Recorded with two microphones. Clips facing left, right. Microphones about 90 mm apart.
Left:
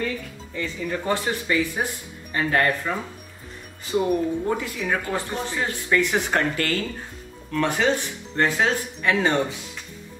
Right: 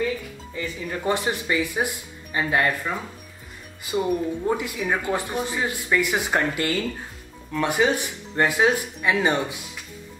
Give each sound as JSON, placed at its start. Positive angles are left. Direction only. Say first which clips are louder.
{"t": 0.6, "sound": "speech", "louder": "left 2 dB", "side_deg": -15}